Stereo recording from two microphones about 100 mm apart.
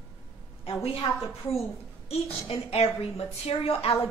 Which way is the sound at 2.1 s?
85° left.